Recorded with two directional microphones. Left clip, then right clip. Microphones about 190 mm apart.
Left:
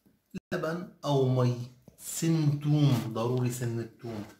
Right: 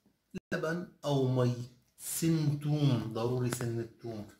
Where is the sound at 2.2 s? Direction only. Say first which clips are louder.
Left 3 dB; 20° right (ahead or behind).